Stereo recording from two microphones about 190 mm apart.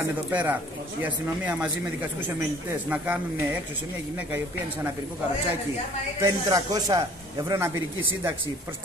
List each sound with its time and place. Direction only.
0.3 s speech: 10° right (ahead or behind)
6.2 s speech: 20° right (ahead or behind)